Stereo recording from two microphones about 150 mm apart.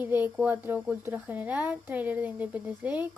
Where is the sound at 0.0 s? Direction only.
10° right (ahead or behind).